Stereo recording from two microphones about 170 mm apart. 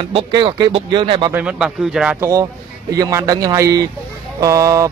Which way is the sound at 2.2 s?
20° right (ahead or behind).